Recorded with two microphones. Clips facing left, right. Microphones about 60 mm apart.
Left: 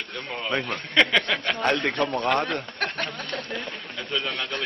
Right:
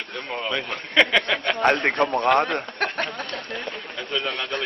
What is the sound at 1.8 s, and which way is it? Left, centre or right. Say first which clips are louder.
Speech: right 3 dB; right.